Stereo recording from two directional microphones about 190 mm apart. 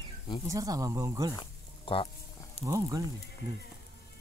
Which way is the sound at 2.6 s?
15° right (ahead or behind).